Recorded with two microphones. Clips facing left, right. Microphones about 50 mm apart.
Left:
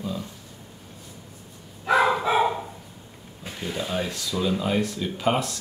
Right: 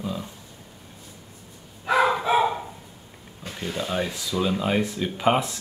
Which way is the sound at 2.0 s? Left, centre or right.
Centre.